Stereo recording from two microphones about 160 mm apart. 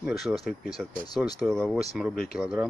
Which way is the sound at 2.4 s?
5° right (ahead or behind).